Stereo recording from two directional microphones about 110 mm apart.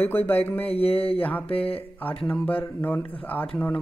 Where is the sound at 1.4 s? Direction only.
60° left (ahead or behind).